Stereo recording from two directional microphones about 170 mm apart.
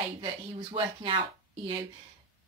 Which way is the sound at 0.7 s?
30° right (ahead or behind).